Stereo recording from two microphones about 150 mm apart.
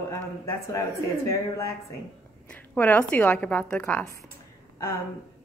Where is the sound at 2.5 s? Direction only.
10° left (ahead or behind).